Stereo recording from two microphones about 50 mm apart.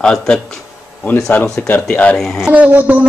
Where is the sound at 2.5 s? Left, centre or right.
Right.